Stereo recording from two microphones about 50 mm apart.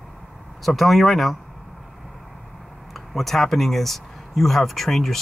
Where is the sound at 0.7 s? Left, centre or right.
Centre.